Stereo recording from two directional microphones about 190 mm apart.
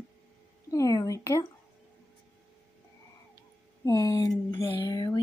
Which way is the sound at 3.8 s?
20° left (ahead or behind).